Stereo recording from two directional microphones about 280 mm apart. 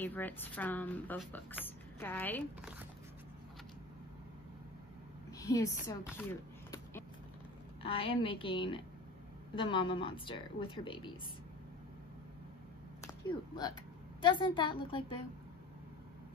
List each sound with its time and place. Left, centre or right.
0.0 s speech: centre
5.4 s speech: centre
6.1 s a sound: centre
7.8 s a woman's voice: centre
14.2 s speech: centre